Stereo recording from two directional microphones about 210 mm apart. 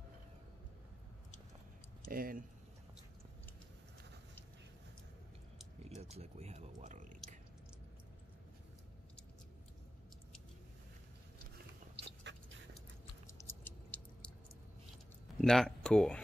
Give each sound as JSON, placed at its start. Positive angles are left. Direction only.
{"t": 2.0, "sound": "speech", "side_deg": -40}
{"t": 5.8, "sound": "speech", "side_deg": -30}
{"t": 11.5, "sound": "dog", "side_deg": -55}
{"t": 13.3, "sound": "chewing", "side_deg": 10}
{"t": 15.4, "sound": "speech", "side_deg": 5}